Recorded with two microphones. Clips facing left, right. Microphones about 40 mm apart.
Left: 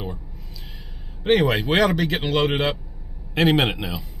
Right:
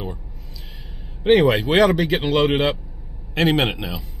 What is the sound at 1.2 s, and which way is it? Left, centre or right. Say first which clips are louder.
Speech: right 4 dB; centre.